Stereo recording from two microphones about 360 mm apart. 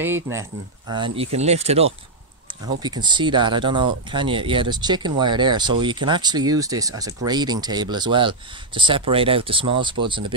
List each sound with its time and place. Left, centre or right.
0.0 s speech: centre